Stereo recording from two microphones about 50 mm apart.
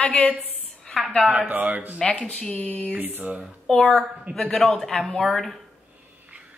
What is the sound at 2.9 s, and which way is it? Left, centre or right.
Speech, right.